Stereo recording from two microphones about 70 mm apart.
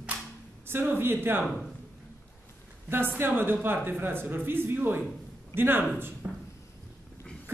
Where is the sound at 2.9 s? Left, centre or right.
Right.